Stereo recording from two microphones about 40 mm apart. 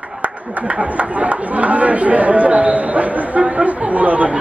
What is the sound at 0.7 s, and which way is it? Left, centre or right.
Speech, right.